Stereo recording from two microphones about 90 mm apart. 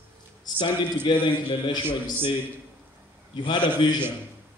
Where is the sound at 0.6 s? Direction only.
60° left (ahead or behind).